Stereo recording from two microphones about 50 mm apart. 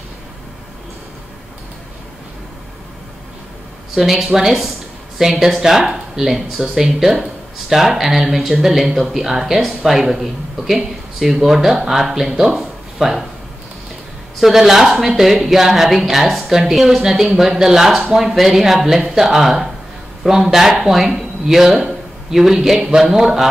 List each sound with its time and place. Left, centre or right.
3.9 s speech: centre
14.4 s a man's voice: centre